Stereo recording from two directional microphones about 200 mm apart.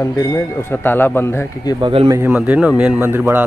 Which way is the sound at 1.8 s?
25° right (ahead or behind).